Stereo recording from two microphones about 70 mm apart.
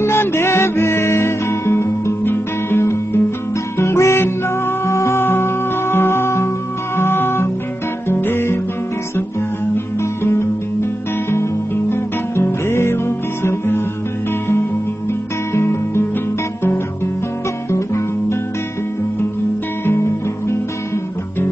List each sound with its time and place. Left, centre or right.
0.0 s music: left
9.9 s music: left
11.9 s music: left
15.5 s music: left
16.6 s guitar: left
17.6 s music: left